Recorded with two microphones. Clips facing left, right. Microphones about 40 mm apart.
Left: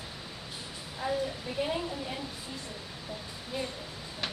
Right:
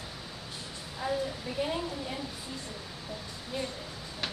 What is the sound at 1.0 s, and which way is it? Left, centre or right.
A woman's voice, centre.